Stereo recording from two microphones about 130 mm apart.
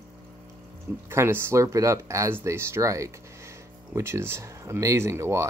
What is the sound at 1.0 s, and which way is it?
Speech, 20° right (ahead or behind).